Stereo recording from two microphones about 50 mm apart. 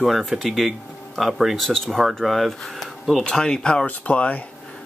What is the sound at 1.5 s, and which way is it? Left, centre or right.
Speech, centre.